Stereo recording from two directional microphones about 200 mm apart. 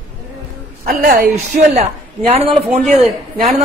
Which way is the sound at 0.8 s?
50° right (ahead or behind).